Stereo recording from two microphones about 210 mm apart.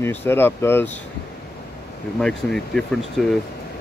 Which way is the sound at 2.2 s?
5° left (ahead or behind).